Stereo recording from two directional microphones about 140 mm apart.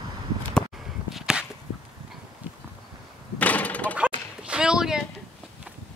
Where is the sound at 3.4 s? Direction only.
10° left (ahead or behind).